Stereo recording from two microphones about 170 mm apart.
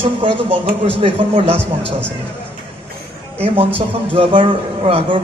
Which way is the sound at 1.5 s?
5° left (ahead or behind).